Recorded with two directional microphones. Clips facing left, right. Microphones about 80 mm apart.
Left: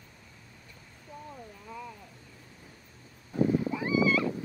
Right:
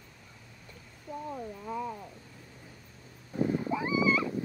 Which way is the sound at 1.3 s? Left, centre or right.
Right.